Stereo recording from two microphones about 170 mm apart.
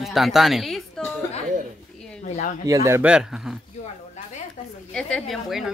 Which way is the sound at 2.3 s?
50° left (ahead or behind).